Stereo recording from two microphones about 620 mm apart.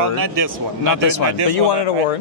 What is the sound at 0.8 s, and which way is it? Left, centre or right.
Speech, left.